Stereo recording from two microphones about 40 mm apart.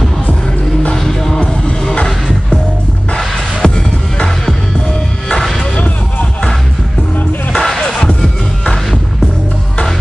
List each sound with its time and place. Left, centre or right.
0.9 s music: centre
1.7 s music: left
3.6 s music: centre
4.8 s music: centre
5.8 s music: left
7.5 s music: centre